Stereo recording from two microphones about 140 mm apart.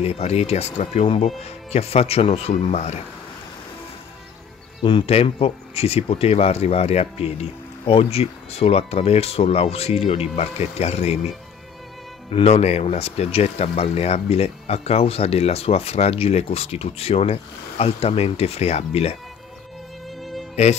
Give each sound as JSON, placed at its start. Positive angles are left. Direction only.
{"t": 0.0, "sound": "speech", "side_deg": 50}
{"t": 4.8, "sound": "speech", "side_deg": 40}